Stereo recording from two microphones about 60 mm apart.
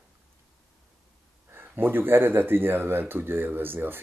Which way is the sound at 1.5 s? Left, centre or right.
Right.